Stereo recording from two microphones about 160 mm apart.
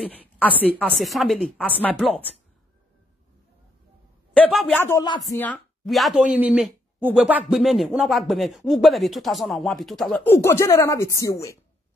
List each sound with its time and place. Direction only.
0.4 s a woman's voice: 10° left (ahead or behind)
4.3 s speech: 5° left (ahead or behind)
4.7 s a woman's voice: 15° left (ahead or behind)
5.9 s speech: centre (ahead or behind); by 11.5 s 20° left (ahead or behind)